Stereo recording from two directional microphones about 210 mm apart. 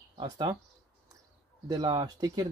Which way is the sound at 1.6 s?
15° right (ahead or behind).